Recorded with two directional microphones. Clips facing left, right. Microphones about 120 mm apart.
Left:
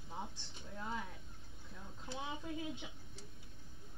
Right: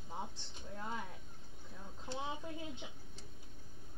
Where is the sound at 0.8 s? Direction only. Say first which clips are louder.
Even; 15° right (ahead or behind).